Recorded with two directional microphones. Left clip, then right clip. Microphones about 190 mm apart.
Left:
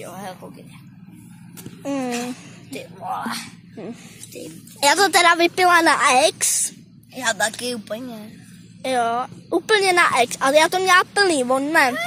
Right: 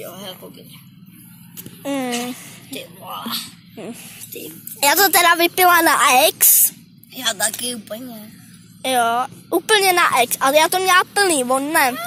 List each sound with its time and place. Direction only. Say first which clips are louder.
0.0 s a sound: right 1 dB; 25° left (ahead or behind)
1.8 s speech: right 2 dB; centre (ahead or behind)
3.1 s speech: left 1 dB; 25° left (ahead or behind)
4.7 s speech: right 1 dB; centre (ahead or behind)
7.2 s a woman's voice: left 1 dB; 45° left (ahead or behind)
8.8 s a woman's voice: right 3 dB; centre (ahead or behind)